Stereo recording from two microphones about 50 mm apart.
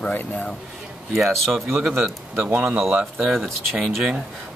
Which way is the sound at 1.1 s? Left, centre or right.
Centre.